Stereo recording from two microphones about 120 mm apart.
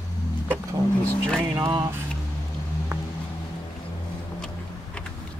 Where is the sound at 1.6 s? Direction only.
20° right (ahead or behind).